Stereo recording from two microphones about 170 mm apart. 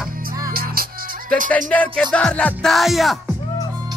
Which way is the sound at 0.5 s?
60° right (ahead or behind).